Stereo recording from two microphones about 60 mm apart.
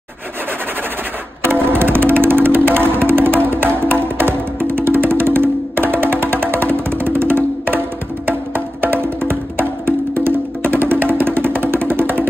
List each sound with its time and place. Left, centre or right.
1.4 s music: right